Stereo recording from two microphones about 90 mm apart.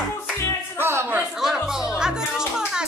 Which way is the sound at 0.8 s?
25° right (ahead or behind).